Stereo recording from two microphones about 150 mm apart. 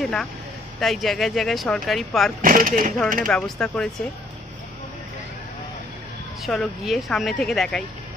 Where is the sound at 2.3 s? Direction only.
65° right (ahead or behind).